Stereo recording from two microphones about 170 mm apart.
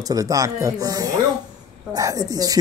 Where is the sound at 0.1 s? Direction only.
20° right (ahead or behind).